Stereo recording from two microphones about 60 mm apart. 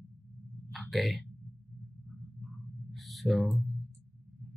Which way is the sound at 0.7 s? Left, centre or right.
Centre.